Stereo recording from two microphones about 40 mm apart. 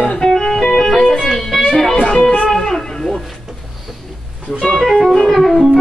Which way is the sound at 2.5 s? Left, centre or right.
Centre.